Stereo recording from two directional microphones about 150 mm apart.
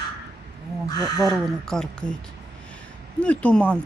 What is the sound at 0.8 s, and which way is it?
Speech, 25° left (ahead or behind).